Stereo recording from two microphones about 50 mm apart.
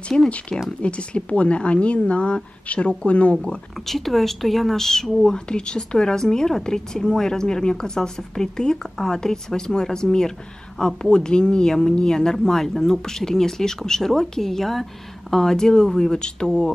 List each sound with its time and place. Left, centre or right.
0.1 s speech: centre
3.8 s speech: centre